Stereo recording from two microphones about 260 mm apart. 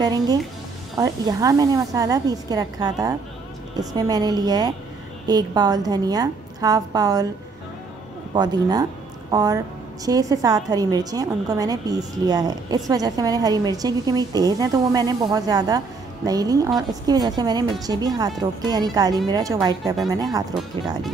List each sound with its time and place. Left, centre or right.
0.0 s a woman's voice: centre
8.4 s a woman's voice: centre